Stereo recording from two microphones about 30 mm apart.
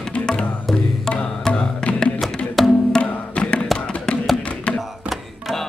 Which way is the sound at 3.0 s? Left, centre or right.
Left.